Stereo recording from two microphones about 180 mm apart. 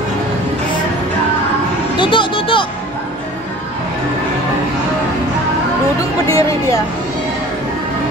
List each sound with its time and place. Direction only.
2.0 s music: 30° left (ahead or behind)
6.2 s speech: 20° left (ahead or behind)